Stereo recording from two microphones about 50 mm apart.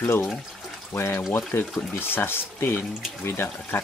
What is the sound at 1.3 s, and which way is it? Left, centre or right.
Speech, left.